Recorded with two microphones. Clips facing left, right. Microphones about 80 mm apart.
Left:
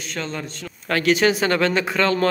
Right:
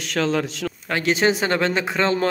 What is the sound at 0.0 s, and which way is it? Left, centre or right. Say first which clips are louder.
Speech: right 7 dB; right.